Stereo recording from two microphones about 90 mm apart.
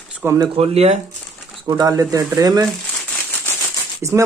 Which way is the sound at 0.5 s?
90° right.